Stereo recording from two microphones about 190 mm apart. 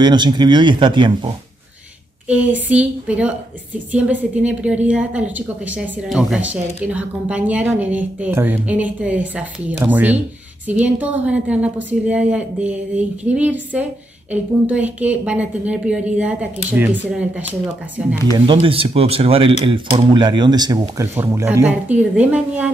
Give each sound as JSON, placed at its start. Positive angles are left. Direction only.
{"t": 0.0, "sound": "speech", "side_deg": -25}
{"t": 2.2, "sound": "a woman's voice", "side_deg": -5}
{"t": 18.5, "sound": "a woman's voice", "side_deg": -30}